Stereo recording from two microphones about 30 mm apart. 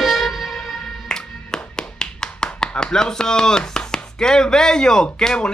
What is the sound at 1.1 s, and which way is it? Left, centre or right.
Clapping, left.